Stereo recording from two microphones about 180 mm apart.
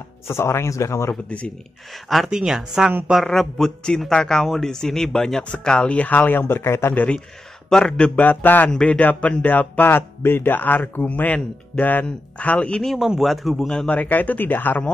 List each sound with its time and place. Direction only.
0.3 s a man's voice: 15° left (ahead or behind)
2.0 s a man's voice: centre (ahead or behind)